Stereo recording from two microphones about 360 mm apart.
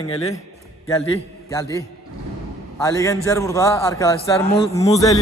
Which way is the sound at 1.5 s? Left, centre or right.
Centre.